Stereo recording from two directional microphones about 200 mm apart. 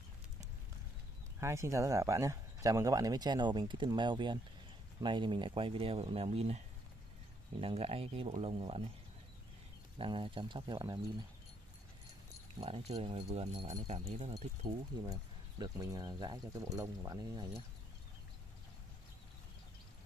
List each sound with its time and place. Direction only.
1.4 s speech: 15° right (ahead or behind); by 6.6 s 30° right (ahead or behind)
7.6 s speech: 30° right (ahead or behind)
9.9 s speech: 25° right (ahead or behind)
12.5 s speech: 30° right (ahead or behind)
15.6 s speech: 20° right (ahead or behind)